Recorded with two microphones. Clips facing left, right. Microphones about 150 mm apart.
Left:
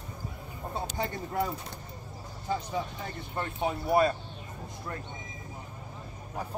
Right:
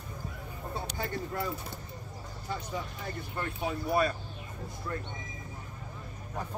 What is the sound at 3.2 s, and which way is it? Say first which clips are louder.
Speech: left 3 dB; 25° left (ahead or behind).